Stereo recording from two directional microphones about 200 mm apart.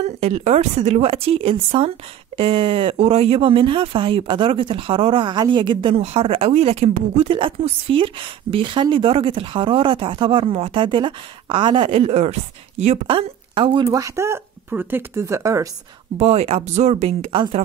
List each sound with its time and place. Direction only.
0.0 s speech: 35° right (ahead or behind); by 15.7 s 15° right (ahead or behind)
16.2 s speech: 30° right (ahead or behind)